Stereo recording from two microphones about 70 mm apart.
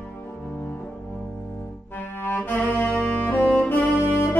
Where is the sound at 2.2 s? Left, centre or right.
Left.